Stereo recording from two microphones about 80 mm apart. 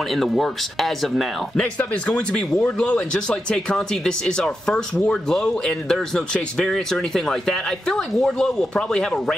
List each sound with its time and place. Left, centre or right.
0.1 s speech: centre
1.8 s speech: centre